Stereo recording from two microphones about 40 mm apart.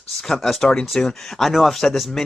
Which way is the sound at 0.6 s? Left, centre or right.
Centre.